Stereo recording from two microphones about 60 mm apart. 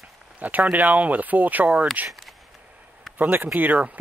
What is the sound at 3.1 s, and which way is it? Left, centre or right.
Speech, right.